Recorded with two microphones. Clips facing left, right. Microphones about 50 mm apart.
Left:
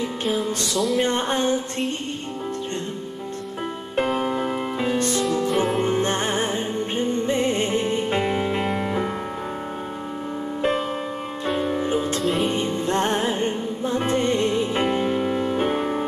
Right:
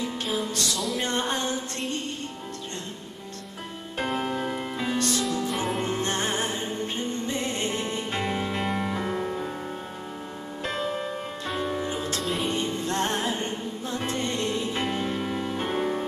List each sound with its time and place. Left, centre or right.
0.7 s a sound: centre
1.0 s a sound: left
4.0 s music: centre; by 5.2 s left
5.5 s music: centre
5.9 s music: left
10.6 s music: centre
11.8 s music: left
12.2 s music: centre
12.5 s music: left